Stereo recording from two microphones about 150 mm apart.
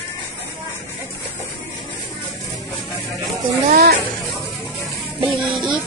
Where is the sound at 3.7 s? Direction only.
70° right (ahead or behind).